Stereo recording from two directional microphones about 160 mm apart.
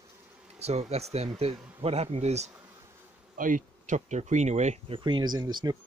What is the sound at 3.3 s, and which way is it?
Speech, 55° right (ahead or behind).